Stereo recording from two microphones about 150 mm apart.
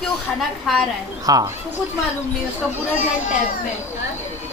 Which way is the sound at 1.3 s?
25° right (ahead or behind).